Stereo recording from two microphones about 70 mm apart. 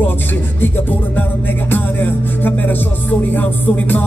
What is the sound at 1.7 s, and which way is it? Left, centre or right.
Music, left.